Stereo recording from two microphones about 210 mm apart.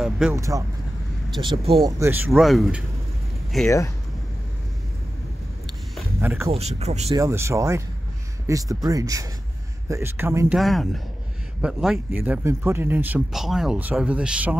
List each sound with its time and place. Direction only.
0.0 s speech: 5° right (ahead or behind)
0.4 s speech: 15° right (ahead or behind)
2.0 s speech: 10° right (ahead or behind)
6.2 s speech: 10° right (ahead or behind)
6.5 s speech: 30° right (ahead or behind)
7.2 s speech: 15° right (ahead or behind)
10.6 s speech: centre (ahead or behind)